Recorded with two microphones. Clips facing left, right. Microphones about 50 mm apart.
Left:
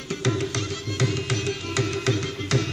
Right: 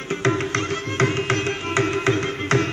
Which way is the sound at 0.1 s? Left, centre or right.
Right.